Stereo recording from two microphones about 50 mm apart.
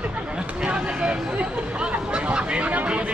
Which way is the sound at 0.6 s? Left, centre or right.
Right.